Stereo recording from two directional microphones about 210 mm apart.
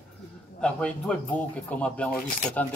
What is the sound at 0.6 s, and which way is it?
A man's voice, 5° left (ahead or behind).